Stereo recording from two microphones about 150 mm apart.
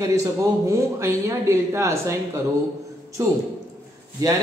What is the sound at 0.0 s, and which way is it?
Speech, 20° right (ahead or behind).